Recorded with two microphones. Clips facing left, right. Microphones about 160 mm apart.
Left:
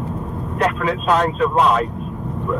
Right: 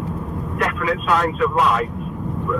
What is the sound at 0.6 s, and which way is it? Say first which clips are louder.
Speech: left 3 dB; 25° left (ahead or behind).